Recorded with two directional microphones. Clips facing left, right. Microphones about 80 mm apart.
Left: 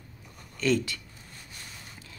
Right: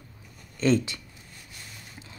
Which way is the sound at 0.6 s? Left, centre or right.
Right.